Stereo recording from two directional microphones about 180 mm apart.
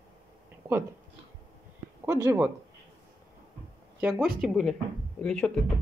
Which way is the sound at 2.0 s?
15° right (ahead or behind).